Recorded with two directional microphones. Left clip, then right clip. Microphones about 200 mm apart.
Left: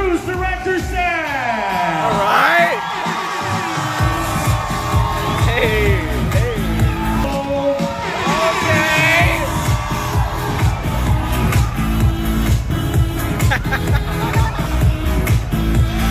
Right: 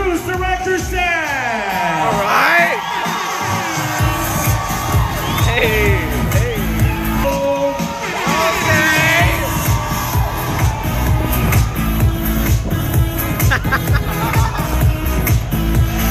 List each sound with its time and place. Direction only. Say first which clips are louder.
2.2 s a sound: even; centre (ahead or behind)
5.5 s music: right 2 dB; centre (ahead or behind)
8.7 s music: right 1 dB; centre (ahead or behind)